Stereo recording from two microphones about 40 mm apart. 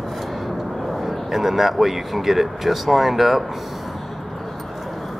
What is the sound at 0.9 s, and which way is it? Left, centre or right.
Speech, centre.